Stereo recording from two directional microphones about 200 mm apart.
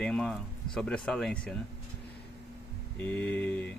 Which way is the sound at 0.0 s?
5° left (ahead or behind).